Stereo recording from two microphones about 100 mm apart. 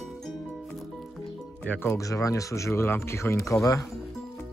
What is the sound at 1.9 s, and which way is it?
Speech, 35° left (ahead or behind).